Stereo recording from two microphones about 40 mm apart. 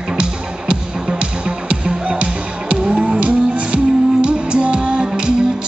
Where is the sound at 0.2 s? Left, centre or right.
Right.